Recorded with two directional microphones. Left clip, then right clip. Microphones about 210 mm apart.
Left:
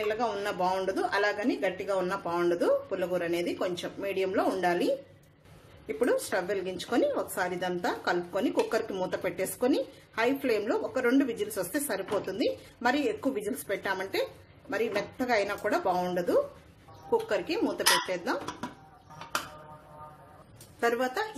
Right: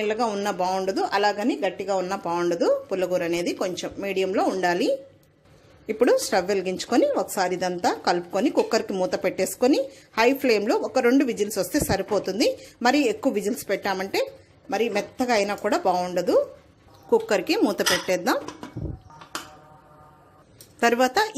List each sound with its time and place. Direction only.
0.0 s speech: 40° right (ahead or behind)
17.1 s speech: 45° right (ahead or behind)
20.8 s speech: 40° right (ahead or behind)